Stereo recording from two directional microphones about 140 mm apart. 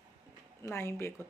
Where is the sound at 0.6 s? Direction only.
20° left (ahead or behind).